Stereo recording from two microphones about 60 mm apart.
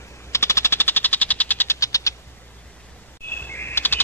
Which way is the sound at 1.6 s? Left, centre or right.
Left.